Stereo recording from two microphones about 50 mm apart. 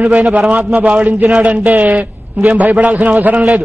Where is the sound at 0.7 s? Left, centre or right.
Right.